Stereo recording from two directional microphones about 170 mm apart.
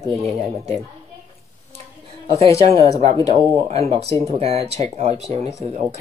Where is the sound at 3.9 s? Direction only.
35° right (ahead or behind).